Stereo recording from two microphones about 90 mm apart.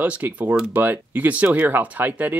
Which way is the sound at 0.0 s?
15° right (ahead or behind).